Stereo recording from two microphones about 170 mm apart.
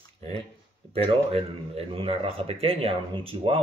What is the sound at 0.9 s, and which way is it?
Speech, 35° right (ahead or behind).